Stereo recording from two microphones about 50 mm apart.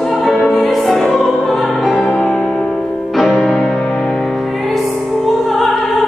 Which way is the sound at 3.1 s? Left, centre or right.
Centre.